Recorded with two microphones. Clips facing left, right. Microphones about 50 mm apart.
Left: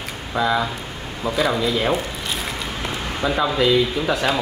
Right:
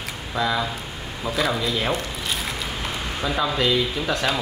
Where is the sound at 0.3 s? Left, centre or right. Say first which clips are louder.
Left 4 dB; centre.